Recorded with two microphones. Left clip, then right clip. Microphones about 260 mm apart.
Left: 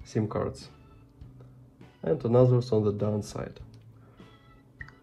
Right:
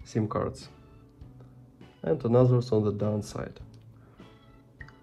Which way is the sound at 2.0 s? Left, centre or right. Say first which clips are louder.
Left 1 dB; right.